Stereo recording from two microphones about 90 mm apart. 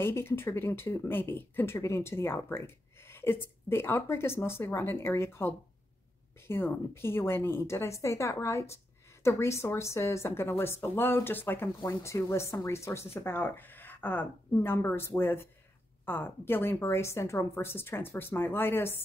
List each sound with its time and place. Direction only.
0.0 s a woman's voice: 25° left (ahead or behind)